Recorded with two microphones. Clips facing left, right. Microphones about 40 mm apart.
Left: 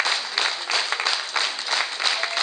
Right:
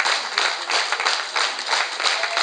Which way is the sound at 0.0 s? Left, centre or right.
Centre.